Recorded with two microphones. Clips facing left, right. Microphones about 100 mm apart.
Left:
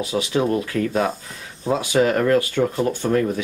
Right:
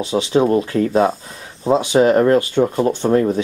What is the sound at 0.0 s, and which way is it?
Speech, 25° right (ahead or behind).